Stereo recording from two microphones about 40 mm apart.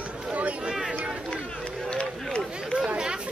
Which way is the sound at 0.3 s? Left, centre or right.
Right.